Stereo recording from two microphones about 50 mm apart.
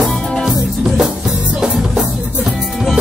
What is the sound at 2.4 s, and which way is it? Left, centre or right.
Music, centre.